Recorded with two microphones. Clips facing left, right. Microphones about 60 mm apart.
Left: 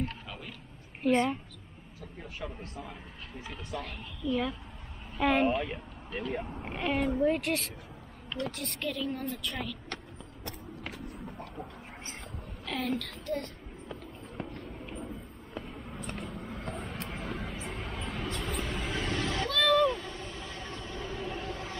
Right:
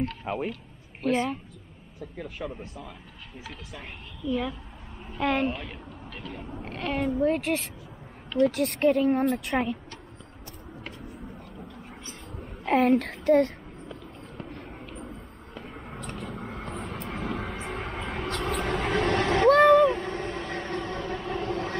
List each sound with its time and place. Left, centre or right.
0.2 s a sound: right
1.0 s a woman's voice: centre
2.4 s a woman's voice: centre
8.5 s a woman's voice: right
10.4 s vehicle: left
12.6 s a woman's voice: right
15.7 s vehicle: right
19.7 s vehicle: right